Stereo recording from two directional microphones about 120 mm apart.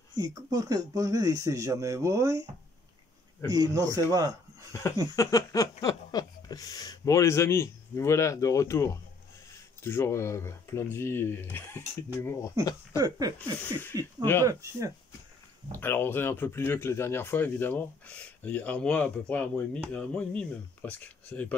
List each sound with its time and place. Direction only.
0.2 s speech: 30° right (ahead or behind)
3.4 s speech: 30° right (ahead or behind)
5.1 s speech: 30° left (ahead or behind)
12.9 s speech: 30° right (ahead or behind)
15.8 s speech: 20° left (ahead or behind)